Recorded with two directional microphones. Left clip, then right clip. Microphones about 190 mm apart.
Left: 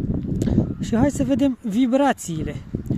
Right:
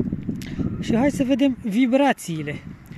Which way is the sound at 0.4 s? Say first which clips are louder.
Left 6 dB; centre (ahead or behind).